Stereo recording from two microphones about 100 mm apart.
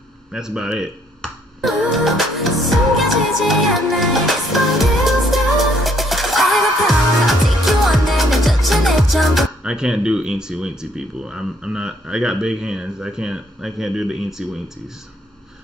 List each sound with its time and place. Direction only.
0.3 s music: 5° right (ahead or behind)